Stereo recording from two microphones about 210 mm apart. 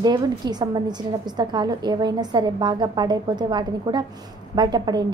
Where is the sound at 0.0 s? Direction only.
20° right (ahead or behind).